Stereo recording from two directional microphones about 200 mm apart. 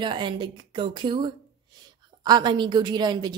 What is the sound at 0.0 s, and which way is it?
Speech, 25° right (ahead or behind).